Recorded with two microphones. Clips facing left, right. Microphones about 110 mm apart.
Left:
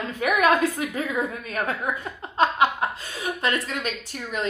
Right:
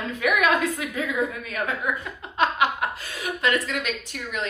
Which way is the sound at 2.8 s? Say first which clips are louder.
Left 1 dB; 30° left (ahead or behind).